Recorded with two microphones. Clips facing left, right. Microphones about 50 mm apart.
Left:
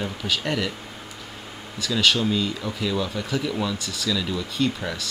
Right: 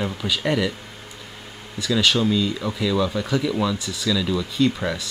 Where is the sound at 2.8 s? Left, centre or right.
Centre.